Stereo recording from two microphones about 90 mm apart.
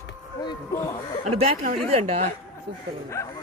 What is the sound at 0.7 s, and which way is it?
Speech, 30° left (ahead or behind).